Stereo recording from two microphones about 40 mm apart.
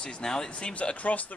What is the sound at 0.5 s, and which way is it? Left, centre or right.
Speech, left.